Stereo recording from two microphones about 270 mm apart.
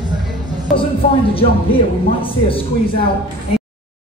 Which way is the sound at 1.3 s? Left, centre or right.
Centre.